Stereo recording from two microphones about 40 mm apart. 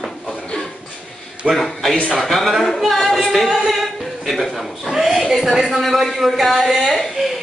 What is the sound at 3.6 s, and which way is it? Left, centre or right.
A capella, centre.